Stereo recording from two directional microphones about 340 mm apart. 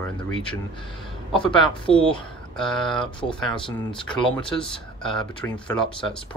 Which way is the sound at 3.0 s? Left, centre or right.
Centre.